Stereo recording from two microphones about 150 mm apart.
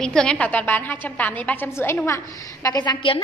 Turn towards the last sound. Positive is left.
turn(degrees=30)  # may be behind; listen again after turning